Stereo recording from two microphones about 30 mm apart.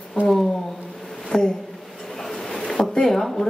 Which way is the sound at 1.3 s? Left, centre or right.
Left.